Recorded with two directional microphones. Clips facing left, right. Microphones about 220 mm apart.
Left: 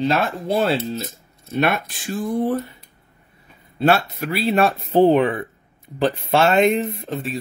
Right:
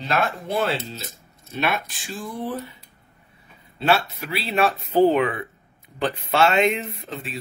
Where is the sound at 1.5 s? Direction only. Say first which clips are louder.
Left 5 dB; 55° left (ahead or behind).